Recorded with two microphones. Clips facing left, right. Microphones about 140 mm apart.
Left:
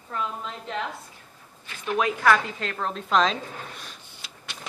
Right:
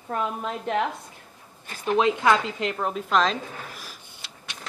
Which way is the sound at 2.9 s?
5° right (ahead or behind).